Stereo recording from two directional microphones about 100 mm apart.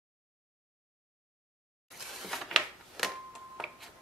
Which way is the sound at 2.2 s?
Centre (ahead or behind).